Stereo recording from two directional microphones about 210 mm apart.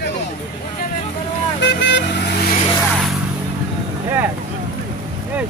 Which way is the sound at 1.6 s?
55° left (ahead or behind).